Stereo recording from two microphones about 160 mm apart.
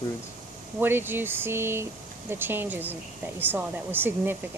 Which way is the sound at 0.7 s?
15° right (ahead or behind).